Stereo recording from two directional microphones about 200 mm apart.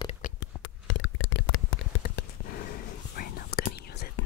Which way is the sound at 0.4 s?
75° left (ahead or behind).